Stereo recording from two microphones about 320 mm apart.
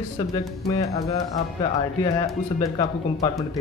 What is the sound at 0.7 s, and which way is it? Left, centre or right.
Speech, centre.